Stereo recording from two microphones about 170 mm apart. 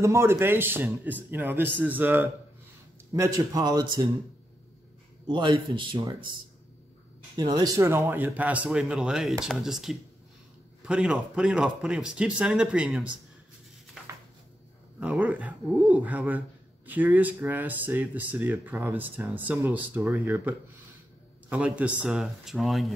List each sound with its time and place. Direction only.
0.0 s speech: 15° right (ahead or behind)
5.2 s speech: 25° right (ahead or behind)
7.3 s speech: 25° right (ahead or behind); by 13.0 s 5° right (ahead or behind)
15.0 s speech: 10° right (ahead or behind)